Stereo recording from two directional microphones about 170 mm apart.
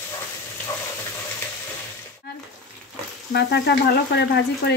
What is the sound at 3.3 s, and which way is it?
Frying, 80° left.